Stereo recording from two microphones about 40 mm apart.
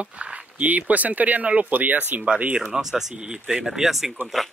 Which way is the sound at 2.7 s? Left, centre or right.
Centre.